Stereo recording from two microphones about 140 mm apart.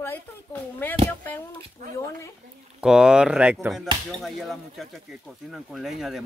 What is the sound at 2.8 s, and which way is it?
Speech, 5° right (ahead or behind).